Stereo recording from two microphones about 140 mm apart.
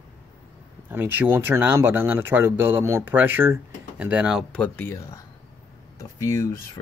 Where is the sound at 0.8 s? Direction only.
15° right (ahead or behind).